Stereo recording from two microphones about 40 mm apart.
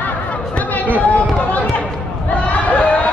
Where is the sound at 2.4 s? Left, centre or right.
Left.